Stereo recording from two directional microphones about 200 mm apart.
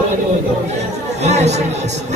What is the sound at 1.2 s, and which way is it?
Speech, 35° right (ahead or behind).